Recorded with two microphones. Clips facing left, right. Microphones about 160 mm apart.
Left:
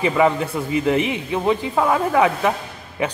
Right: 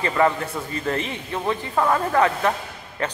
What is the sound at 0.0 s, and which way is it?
A man's voice, 10° left (ahead or behind).